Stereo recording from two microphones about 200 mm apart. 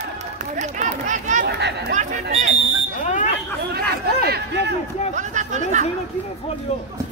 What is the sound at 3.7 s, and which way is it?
Chatter, 50° right (ahead or behind).